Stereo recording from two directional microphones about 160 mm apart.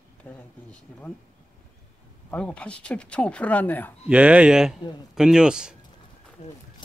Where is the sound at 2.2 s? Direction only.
5° left (ahead or behind).